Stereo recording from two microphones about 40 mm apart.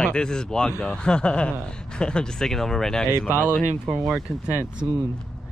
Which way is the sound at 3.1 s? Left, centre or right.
Right.